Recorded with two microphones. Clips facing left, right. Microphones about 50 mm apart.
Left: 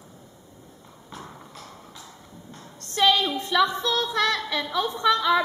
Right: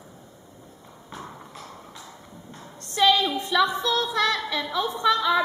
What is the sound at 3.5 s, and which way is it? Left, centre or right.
A woman's voice, centre.